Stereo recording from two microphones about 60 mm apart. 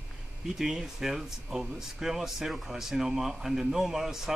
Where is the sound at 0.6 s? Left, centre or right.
Centre.